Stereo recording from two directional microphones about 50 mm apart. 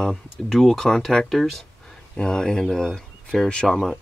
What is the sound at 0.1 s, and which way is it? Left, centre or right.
Speech, centre.